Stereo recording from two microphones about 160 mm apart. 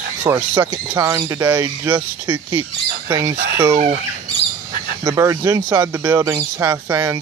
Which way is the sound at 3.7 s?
45° right (ahead or behind).